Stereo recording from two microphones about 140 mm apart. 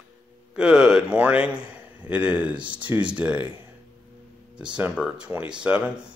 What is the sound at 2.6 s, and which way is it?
Speech, 35° right (ahead or behind).